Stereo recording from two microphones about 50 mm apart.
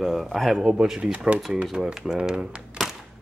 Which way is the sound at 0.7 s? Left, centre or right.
Centre.